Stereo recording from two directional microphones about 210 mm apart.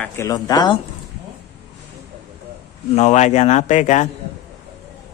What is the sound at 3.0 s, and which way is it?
A man's voice, 30° left (ahead or behind).